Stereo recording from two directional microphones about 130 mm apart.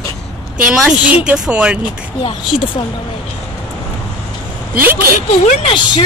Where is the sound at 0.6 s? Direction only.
5° right (ahead or behind).